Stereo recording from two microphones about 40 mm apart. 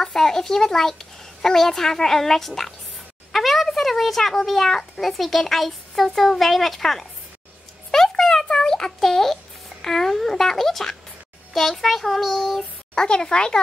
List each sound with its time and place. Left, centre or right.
0.0 s a child's voice: centre
7.9 s a sound: centre
8.5 s a child's voice: centre
12.9 s speech: left